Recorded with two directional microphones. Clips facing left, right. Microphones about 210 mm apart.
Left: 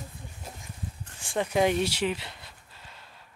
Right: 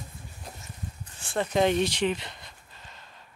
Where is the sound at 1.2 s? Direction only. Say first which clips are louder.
Even; 10° left (ahead or behind).